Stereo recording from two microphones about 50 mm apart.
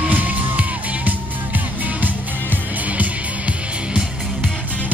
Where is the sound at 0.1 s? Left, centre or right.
Right.